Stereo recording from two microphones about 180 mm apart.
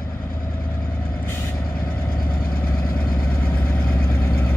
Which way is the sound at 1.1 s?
15° left (ahead or behind).